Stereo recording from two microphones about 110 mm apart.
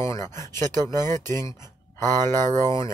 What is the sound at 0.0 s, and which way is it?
Speech, 25° left (ahead or behind).